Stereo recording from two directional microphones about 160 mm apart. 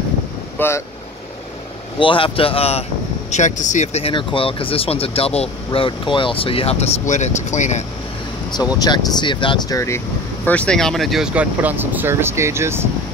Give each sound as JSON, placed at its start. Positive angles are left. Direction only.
{"t": 0.6, "sound": "speech", "side_deg": 15}
{"t": 2.0, "sound": "speech", "side_deg": 30}
{"t": 3.3, "sound": "speech", "side_deg": 50}
{"t": 8.7, "sound": "speech", "side_deg": 25}